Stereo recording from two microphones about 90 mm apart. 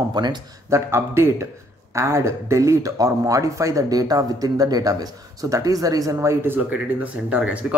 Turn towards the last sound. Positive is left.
turn(degrees=-10)  # may be behind; listen again after turning